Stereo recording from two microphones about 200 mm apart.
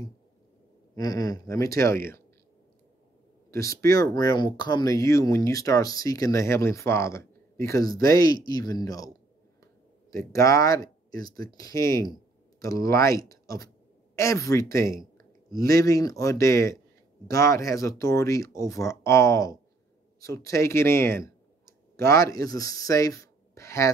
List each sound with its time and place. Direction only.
0.9 s speech: 20° left (ahead or behind)
3.5 s speech: 15° left (ahead or behind)
10.1 s speech: 15° left (ahead or behind)